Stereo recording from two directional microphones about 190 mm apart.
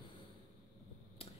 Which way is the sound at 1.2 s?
30° left (ahead or behind).